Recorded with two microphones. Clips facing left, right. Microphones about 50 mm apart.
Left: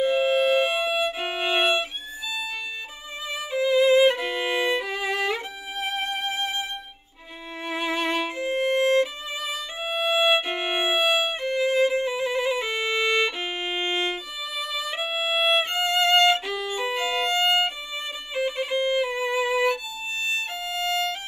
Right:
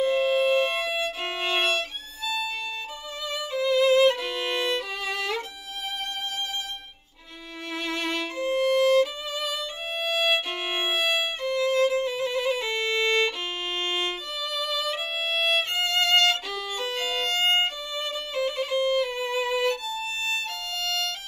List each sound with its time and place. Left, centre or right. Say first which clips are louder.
0.0 s violin: left 1 dB; centre
3.7 s violin: left 2 dB; centre
7.7 s violin: left 4 dB; centre
17.9 s violin: right 1 dB; centre
20.7 s music: left 5 dB; centre